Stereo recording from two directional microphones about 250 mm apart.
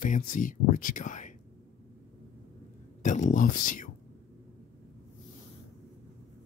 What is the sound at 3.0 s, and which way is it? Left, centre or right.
Speech, left.